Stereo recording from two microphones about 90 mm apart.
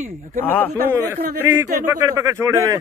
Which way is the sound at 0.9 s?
30° right (ahead or behind).